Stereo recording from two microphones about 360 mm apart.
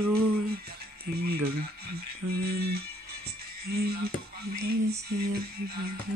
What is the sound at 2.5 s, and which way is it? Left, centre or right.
Music, right.